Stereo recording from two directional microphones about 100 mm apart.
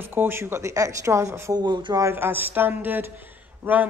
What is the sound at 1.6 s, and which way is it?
Speech, 50° right (ahead or behind).